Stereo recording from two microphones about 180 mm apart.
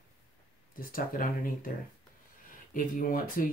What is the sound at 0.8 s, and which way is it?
Speech, 50° left (ahead or behind).